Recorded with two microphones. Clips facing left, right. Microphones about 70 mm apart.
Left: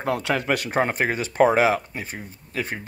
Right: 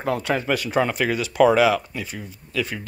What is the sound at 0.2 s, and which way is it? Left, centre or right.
Speech, left.